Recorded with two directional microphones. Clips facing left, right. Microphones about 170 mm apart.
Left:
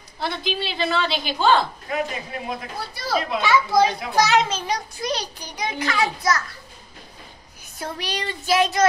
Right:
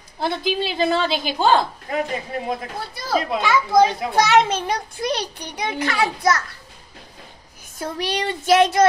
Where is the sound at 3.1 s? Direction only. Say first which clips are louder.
Right 1 dB; 50° right (ahead or behind).